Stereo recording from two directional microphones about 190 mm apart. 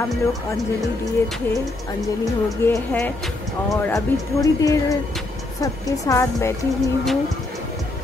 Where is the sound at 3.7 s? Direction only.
15° left (ahead or behind).